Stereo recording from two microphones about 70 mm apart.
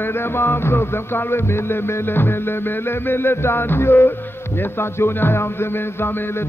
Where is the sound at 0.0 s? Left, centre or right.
Left.